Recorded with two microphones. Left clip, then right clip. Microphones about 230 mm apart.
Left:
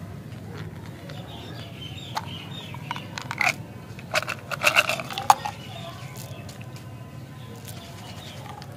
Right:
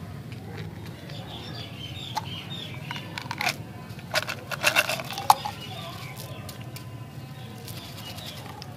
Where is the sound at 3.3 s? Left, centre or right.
Centre.